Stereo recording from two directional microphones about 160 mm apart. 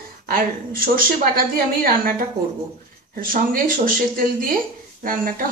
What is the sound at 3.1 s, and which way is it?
A woman's voice, 60° right (ahead or behind).